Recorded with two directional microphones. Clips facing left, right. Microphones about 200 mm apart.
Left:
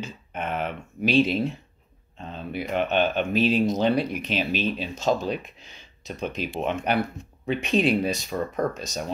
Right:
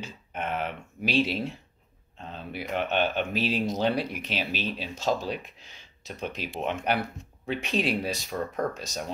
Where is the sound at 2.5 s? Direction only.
50° left (ahead or behind).